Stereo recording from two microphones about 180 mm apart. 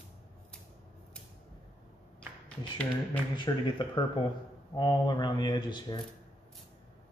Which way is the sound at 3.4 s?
25° left (ahead or behind).